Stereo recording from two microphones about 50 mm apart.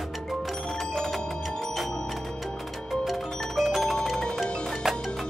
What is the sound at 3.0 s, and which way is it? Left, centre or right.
Percussion, centre.